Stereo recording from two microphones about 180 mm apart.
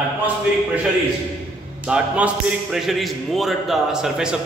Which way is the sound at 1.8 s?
5° right (ahead or behind).